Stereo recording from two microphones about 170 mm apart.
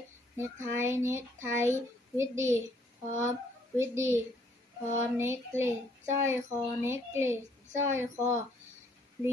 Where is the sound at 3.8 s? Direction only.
15° right (ahead or behind).